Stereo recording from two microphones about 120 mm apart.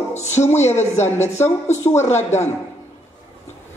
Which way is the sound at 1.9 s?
70° left (ahead or behind).